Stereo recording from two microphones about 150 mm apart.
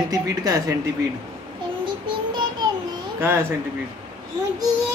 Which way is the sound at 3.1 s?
15° right (ahead or behind).